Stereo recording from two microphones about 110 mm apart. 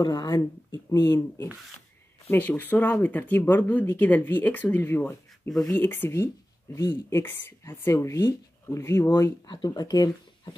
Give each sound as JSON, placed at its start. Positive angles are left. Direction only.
{"t": 0.0, "sound": "speech", "side_deg": 40}
{"t": 2.3, "sound": "speech", "side_deg": 15}
{"t": 9.5, "sound": "speech", "side_deg": 35}